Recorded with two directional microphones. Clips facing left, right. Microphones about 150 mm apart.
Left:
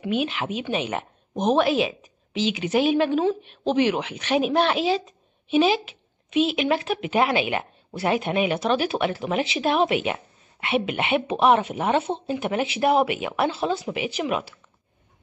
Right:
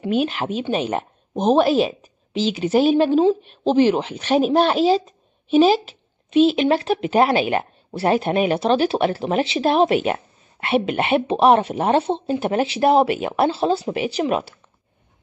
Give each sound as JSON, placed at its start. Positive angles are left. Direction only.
{"t": 0.0, "sound": "a woman's voice", "side_deg": -35}